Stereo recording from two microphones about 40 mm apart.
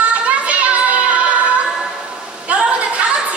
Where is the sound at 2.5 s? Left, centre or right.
Right.